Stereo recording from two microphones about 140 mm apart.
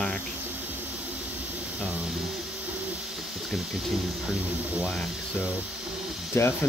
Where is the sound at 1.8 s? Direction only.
5° right (ahead or behind).